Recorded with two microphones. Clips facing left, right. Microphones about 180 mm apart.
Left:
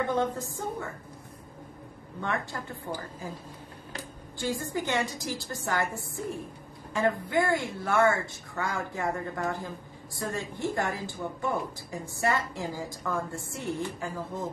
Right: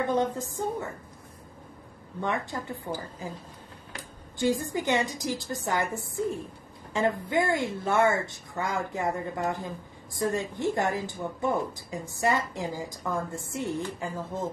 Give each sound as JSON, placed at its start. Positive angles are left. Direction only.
{"t": 0.1, "sound": "a woman's voice", "side_deg": -20}
{"t": 2.2, "sound": "a woman's voice", "side_deg": -20}
{"t": 4.4, "sound": "a woman's voice", "side_deg": -20}